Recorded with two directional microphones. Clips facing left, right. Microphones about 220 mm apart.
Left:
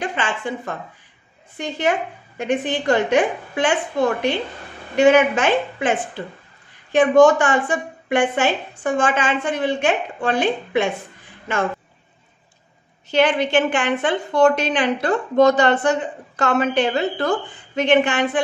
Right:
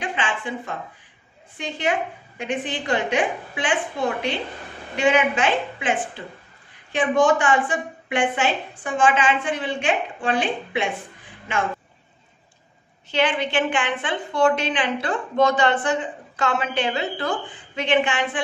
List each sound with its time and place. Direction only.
0.0 s a sound: 40° left (ahead or behind)
1.6 s a woman's voice: 45° left (ahead or behind)
4.9 s a woman's voice: 45° left (ahead or behind)
13.1 s a woman's voice: 40° left (ahead or behind)